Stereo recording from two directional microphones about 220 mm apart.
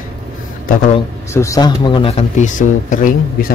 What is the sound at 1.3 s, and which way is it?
Speech, 15° left (ahead or behind).